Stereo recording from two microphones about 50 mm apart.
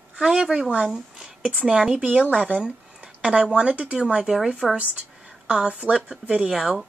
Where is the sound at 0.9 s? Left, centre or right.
Centre.